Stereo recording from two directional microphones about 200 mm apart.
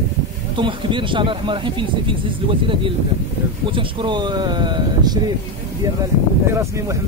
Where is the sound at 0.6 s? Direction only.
25° right (ahead or behind).